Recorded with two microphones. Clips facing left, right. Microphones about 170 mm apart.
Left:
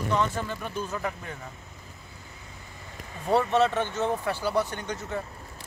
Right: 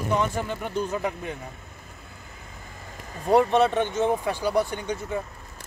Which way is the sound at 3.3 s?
15° right (ahead or behind).